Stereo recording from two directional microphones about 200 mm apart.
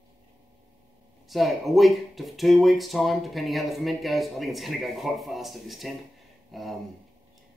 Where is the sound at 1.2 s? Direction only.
Centre (ahead or behind).